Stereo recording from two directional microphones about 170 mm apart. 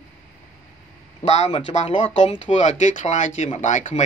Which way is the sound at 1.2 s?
40° left (ahead or behind).